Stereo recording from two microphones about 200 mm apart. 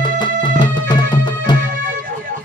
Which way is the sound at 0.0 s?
25° left (ahead or behind).